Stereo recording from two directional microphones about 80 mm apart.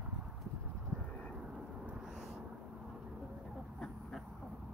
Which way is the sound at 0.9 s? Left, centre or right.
Centre.